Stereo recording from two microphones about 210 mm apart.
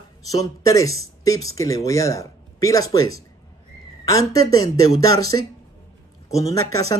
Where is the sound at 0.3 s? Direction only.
15° left (ahead or behind).